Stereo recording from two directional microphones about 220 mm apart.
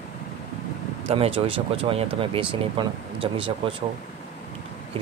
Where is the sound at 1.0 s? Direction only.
25° right (ahead or behind).